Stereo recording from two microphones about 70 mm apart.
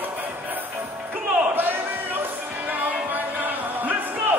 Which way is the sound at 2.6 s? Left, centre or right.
Right.